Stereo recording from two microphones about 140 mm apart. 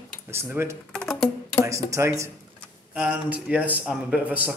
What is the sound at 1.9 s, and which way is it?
Speech, 20° right (ahead or behind).